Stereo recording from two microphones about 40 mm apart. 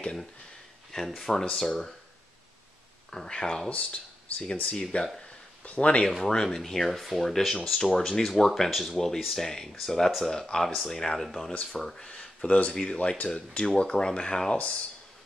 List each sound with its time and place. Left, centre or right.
0.9 s speech: centre
3.1 s speech: centre
3.7 s speech: left
6.0 s speech: centre
10.9 s speech: centre